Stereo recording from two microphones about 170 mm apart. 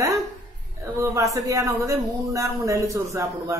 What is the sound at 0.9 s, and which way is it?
A man's voice, 20° right (ahead or behind).